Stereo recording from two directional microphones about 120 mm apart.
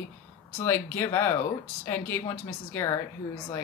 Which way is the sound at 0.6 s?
20° left (ahead or behind).